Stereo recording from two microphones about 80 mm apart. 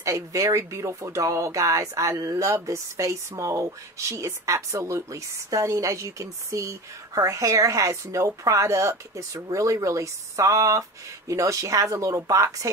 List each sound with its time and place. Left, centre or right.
0.0 s a woman's voice: right